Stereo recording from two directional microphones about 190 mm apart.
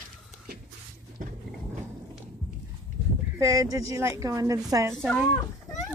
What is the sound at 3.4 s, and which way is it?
A woman's voice, 15° right (ahead or behind).